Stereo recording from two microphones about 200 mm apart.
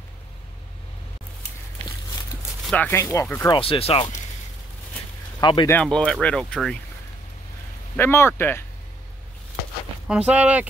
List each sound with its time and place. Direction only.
2.6 s speech: 5° left (ahead or behind)
3.5 s speech: 25° left (ahead or behind)
5.4 s speech: 25° left (ahead or behind)
5.7 s speech: 5° left (ahead or behind)
7.9 s speech: 10° left (ahead or behind)
10.0 s speech: 5° right (ahead or behind)